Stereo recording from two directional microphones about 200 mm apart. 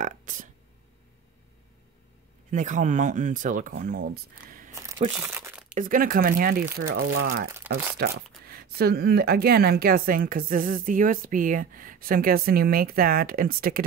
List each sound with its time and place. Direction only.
0.0 s burping: 40° right (ahead or behind)
2.5 s speech: 40° right (ahead or behind)
4.7 s crumpling: 15° right (ahead or behind)
5.8 s a woman's voice: 45° right (ahead or behind)
7.0 s speech: 90° right
7.7 s a sound: 10° right (ahead or behind)
8.5 s a woman's voice: 50° right (ahead or behind)